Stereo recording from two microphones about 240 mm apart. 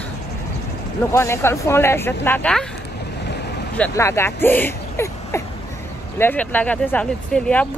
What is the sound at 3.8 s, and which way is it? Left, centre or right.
Speech, centre.